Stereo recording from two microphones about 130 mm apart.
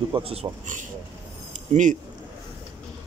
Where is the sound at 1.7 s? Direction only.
75° right (ahead or behind).